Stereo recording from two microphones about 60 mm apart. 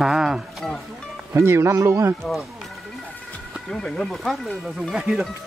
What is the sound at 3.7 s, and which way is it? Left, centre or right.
Speech, centre.